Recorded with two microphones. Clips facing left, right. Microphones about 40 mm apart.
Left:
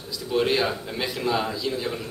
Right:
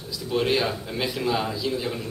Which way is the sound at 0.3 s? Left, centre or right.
Centre.